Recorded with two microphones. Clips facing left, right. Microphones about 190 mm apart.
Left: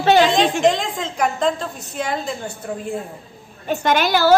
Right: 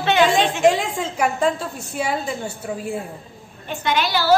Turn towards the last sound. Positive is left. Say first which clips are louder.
# left 3 dB
turn(degrees=50)  # may be behind; listen again after turning